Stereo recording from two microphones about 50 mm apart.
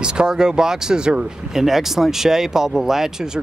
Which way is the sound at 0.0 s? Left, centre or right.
Centre.